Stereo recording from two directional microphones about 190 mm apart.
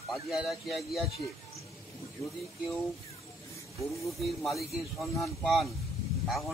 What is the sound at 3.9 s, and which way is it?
Speech, centre (ahead or behind).